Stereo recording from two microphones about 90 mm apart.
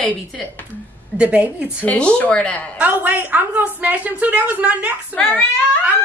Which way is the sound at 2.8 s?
15° right (ahead or behind).